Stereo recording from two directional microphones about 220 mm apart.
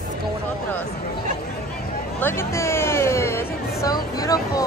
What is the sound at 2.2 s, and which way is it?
A woman's voice, 10° left (ahead or behind).